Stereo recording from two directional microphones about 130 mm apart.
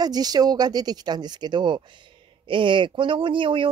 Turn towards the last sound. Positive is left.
turn(degrees=-40)  # may be behind; listen again after turning